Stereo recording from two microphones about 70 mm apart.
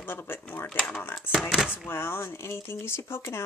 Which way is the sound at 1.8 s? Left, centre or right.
Left.